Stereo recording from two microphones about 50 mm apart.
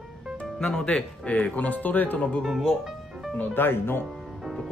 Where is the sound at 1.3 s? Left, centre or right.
Left.